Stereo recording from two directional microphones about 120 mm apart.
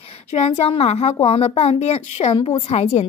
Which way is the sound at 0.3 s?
60° left (ahead or behind).